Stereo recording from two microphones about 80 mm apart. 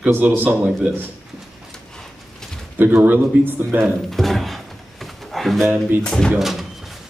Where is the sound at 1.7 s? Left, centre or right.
Centre.